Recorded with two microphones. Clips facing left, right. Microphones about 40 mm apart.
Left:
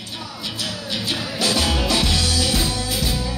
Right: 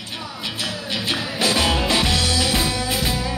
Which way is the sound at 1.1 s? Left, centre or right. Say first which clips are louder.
Right 1 dB; right.